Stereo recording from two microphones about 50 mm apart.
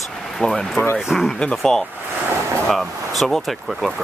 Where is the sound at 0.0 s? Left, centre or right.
Centre.